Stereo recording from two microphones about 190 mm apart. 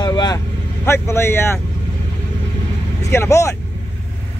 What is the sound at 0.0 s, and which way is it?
Vehicle, 20° left (ahead or behind).